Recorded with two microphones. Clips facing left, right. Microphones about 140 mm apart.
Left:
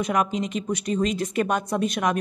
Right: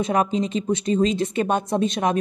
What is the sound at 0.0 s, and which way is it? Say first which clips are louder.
A woman's voice: right 3 dB; 30° right (ahead or behind).